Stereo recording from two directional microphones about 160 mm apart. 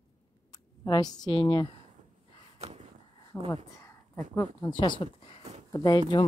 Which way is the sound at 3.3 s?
15° left (ahead or behind).